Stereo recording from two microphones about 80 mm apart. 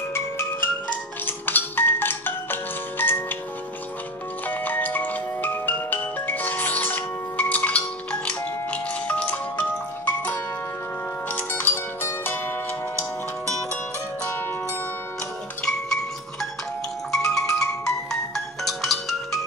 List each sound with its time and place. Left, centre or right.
0.1 s music: left
4.5 s music: left
15.6 s music: centre